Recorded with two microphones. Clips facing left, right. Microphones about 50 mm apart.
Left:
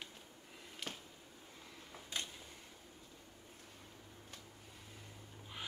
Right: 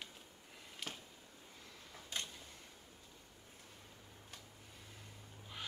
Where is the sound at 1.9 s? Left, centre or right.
Centre.